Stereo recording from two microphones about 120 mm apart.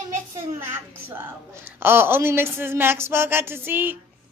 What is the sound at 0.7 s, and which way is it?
A woman's voice, 15° right (ahead or behind).